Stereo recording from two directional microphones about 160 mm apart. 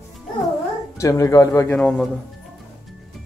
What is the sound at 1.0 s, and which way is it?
A man's voice, 20° left (ahead or behind).